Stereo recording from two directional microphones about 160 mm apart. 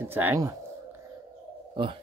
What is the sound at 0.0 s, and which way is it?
Speech, 15° right (ahead or behind).